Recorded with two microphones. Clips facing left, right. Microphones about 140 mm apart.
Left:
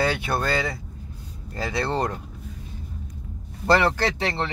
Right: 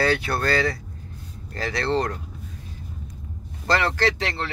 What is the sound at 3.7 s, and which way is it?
Speech, 20° left (ahead or behind).